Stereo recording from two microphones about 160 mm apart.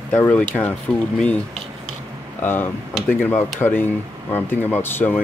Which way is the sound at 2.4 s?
10° left (ahead or behind).